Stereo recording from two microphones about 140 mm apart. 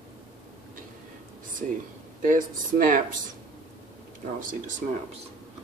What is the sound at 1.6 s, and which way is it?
Speech, 70° right (ahead or behind).